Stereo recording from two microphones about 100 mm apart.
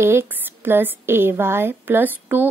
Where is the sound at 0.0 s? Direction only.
25° right (ahead or behind).